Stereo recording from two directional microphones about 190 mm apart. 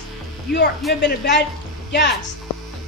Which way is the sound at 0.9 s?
65° left (ahead or behind).